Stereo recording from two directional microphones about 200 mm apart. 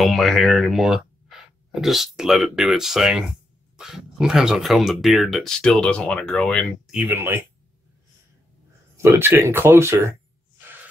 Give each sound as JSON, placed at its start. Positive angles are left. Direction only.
{"t": 0.0, "sound": "speech", "side_deg": 0}
{"t": 8.9, "sound": "speech", "side_deg": -10}